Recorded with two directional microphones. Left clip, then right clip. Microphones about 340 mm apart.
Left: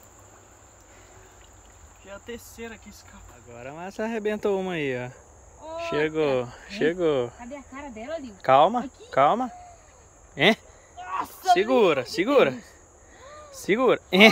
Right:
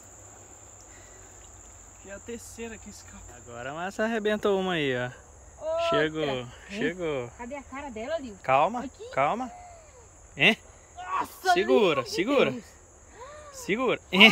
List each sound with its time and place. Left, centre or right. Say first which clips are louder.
2.0 s speech: left 1 dB; centre; by 7.3 s left
7.5 s speech: right 1 dB; centre
8.4 s speech: left 6 dB; left
11.1 s speech: left 3 dB; centre